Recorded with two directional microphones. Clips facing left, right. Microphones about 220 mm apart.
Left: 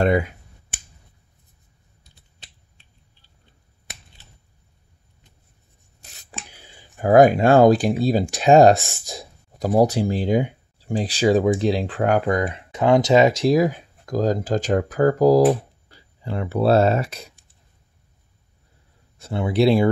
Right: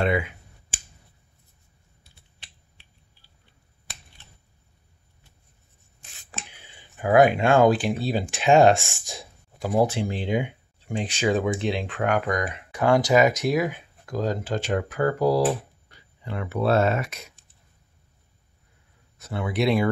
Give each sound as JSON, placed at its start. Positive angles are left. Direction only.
{"t": 0.0, "sound": "speech", "side_deg": 40}
{"t": 5.9, "sound": "rub", "side_deg": 40}
{"t": 6.5, "sound": "speech", "side_deg": 40}
{"t": 19.1, "sound": "speech", "side_deg": 30}